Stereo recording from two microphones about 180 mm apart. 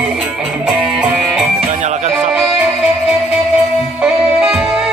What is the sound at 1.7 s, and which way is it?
Music, 40° right (ahead or behind).